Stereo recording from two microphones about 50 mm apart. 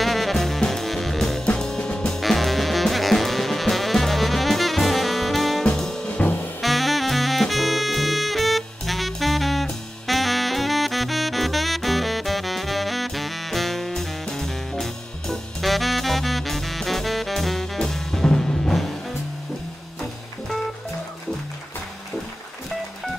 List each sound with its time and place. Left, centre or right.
0.0 s music: centre
1.4 s music: left
2.0 s music: centre
6.6 s saxophone: centre